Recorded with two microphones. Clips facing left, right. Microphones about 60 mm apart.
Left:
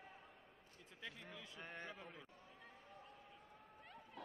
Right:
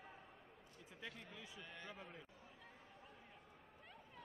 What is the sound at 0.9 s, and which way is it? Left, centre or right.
Speech, centre.